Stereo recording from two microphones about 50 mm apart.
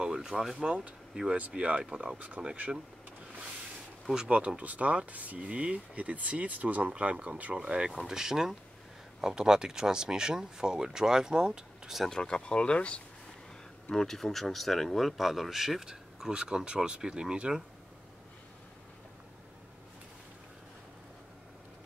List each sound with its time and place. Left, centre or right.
0.0 s speech: centre
0.6 s speech: right
4.1 s speech: centre
7.5 s speech: centre
12.1 s speech: centre
13.9 s speech: centre